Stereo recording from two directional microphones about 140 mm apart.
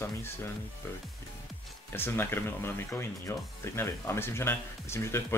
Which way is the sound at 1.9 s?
15° left (ahead or behind).